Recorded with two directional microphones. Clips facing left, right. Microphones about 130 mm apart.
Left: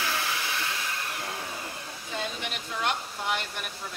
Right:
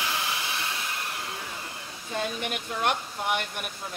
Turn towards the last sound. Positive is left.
turn(degrees=-50)  # may be behind; listen again after turning